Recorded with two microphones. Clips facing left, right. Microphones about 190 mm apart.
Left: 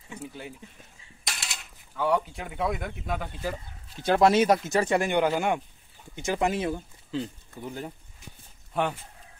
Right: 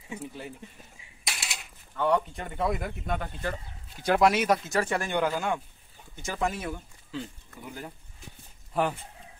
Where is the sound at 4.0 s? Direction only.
25° left (ahead or behind).